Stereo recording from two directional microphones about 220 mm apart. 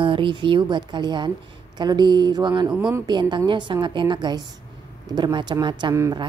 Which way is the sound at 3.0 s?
20° right (ahead or behind).